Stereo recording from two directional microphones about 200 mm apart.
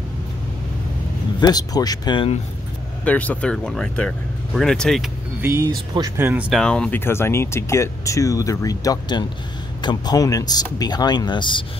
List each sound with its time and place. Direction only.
1.4 s speech: 20° left (ahead or behind)
3.1 s speech: 5° left (ahead or behind)
5.4 s speech: 15° right (ahead or behind)
6.5 s speech: 5° left (ahead or behind); by 11.6 s 25° left (ahead or behind)